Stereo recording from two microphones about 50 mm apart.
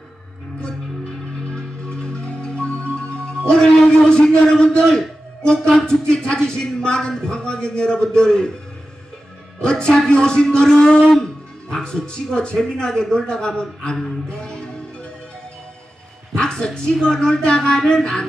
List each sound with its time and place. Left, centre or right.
1.5 s marimba: centre
3.9 s speech: centre
9.6 s speech: centre
16.3 s speech: centre